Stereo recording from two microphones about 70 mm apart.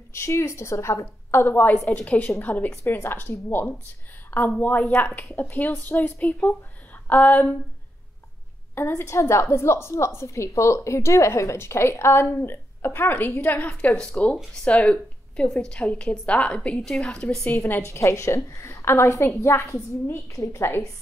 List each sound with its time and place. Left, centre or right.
0.1 s a woman's voice: left
8.7 s a woman's voice: left; by 17.5 s centre
17.5 s a woman's voice: left